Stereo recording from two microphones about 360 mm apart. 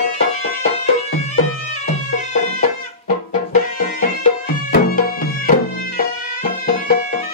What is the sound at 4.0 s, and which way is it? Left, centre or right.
Music, left.